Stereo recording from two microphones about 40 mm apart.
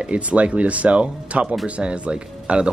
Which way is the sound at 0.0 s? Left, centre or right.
Right.